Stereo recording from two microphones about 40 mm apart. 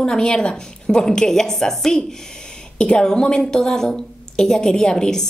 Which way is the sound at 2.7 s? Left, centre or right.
Left.